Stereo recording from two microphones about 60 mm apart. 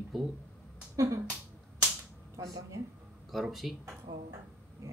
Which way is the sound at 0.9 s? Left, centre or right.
Right.